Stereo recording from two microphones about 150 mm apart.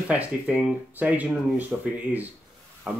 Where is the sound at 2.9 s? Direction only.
5° right (ahead or behind).